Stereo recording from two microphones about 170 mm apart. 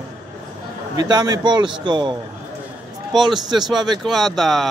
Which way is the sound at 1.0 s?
25° right (ahead or behind).